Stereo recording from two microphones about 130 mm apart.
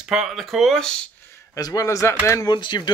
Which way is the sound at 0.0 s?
Centre (ahead or behind).